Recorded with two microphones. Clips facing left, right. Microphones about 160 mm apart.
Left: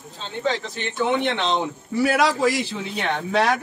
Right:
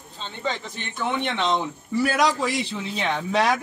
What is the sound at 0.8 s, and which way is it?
Speech, 70° left (ahead or behind).